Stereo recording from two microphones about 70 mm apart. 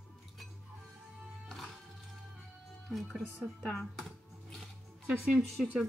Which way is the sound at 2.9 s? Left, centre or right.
Centre.